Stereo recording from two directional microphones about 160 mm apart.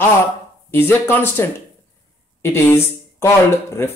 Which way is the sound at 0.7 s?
15° left (ahead or behind).